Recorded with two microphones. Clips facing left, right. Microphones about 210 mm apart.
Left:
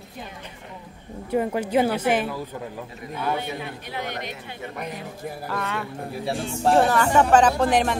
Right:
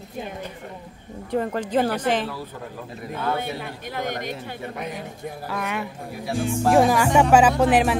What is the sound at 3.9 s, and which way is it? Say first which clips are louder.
Speech: right 3 dB; 45° right (ahead or behind).